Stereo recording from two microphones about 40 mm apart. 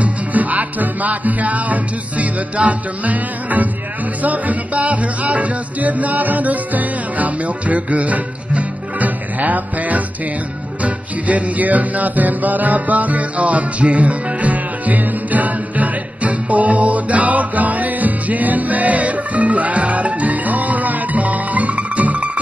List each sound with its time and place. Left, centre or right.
0.0 s music: right